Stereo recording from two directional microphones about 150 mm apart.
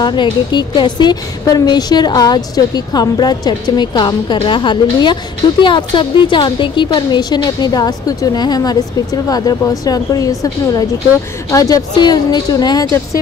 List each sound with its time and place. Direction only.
0.0 s a woman's voice: 30° left (ahead or behind)